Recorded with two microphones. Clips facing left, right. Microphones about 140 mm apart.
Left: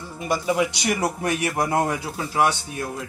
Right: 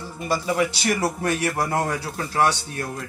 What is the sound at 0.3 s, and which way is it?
Speech, 15° left (ahead or behind).